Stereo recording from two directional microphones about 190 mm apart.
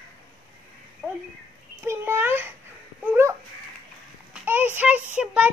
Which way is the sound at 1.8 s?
15° right (ahead or behind).